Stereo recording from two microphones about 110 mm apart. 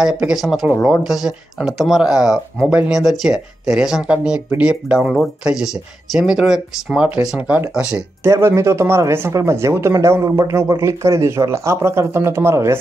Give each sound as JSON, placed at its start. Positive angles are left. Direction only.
{"t": 0.0, "sound": "speech", "side_deg": -5}
{"t": 8.2, "sound": "speech", "side_deg": -25}